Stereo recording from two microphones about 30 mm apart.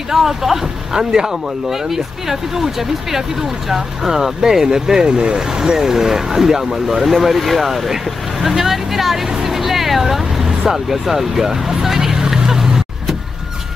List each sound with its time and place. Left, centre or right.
0.1 s speech: centre
5.1 s speech: right
5.5 s speech: right
9.3 s vehicle: centre